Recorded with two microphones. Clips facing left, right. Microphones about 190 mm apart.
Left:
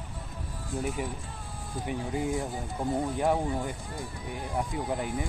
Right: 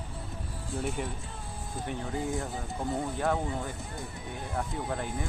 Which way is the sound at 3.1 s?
20° left (ahead or behind).